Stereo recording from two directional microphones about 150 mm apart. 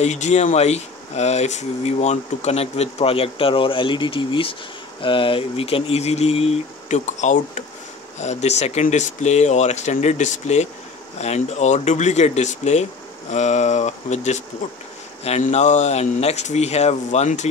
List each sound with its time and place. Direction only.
0.0 s speech: 50° left (ahead or behind)